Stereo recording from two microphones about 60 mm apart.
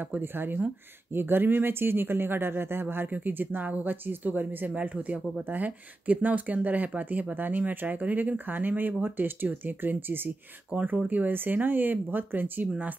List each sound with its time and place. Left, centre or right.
0.1 s speech: right